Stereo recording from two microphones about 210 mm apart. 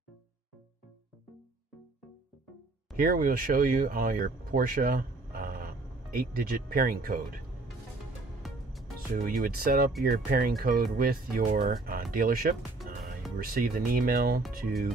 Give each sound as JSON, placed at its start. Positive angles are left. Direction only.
{"t": 3.0, "sound": "speech", "side_deg": -45}
{"t": 8.4, "sound": "music", "side_deg": 0}
{"t": 9.1, "sound": "speech", "side_deg": -45}